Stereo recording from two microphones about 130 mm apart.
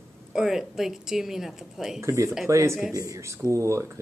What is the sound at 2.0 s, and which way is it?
Speech, 20° right (ahead or behind).